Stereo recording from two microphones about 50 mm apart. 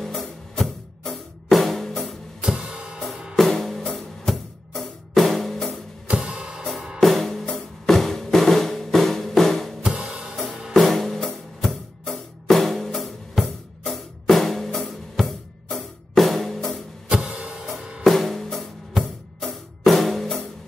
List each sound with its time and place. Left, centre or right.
0.0 s music: centre
2.4 s music: centre
3.3 s music: centre
6.0 s music: right
7.0 s music: centre
9.8 s music: centre
10.7 s music: centre
17.1 s music: right
18.0 s music: centre